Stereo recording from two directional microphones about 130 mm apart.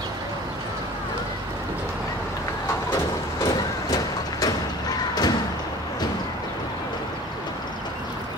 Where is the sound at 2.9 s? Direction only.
25° left (ahead or behind).